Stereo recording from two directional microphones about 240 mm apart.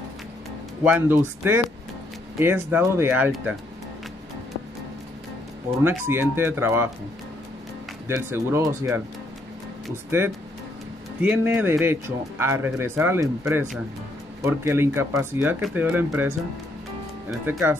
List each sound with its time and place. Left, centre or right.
0.8 s speech: centre
5.9 s speech: centre
8.1 s speech: centre
11.1 s speech: centre